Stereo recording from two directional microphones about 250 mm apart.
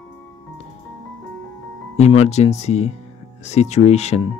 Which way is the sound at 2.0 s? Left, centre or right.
Left.